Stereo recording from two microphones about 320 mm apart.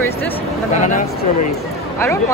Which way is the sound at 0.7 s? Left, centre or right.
Left.